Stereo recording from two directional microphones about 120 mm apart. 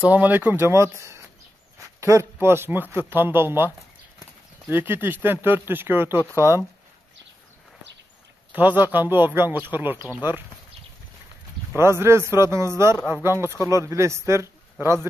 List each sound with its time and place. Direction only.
0.0 s a man's voice: 15° right (ahead or behind)
2.0 s a sound: 25° right (ahead or behind)
2.4 s a man's voice: 20° right (ahead or behind)
8.5 s speech: 15° right (ahead or behind)
11.7 s a man's voice: 20° right (ahead or behind)